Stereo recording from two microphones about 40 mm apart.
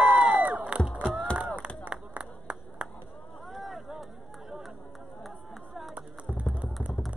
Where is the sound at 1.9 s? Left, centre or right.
Right.